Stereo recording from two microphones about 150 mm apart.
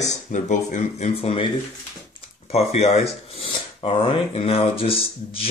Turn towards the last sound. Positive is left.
turn(degrees=40)  # may be behind; listen again after turning